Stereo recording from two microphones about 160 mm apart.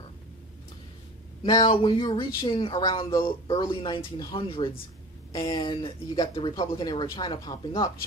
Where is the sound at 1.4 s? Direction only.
30° left (ahead or behind).